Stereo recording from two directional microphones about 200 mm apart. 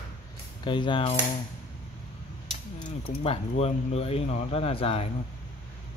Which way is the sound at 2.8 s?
35° left (ahead or behind).